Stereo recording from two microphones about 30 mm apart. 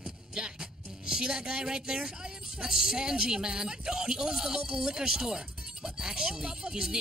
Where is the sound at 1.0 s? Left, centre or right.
Right.